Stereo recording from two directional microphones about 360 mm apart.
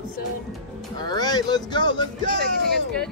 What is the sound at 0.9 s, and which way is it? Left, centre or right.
Speech, centre.